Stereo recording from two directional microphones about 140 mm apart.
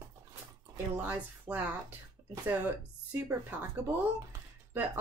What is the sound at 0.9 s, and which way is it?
Speech, 10° right (ahead or behind).